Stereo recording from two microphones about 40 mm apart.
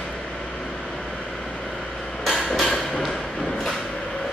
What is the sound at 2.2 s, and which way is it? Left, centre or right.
Hammer, centre.